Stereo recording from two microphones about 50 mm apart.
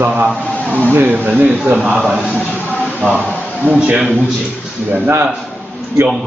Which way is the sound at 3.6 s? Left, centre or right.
Right.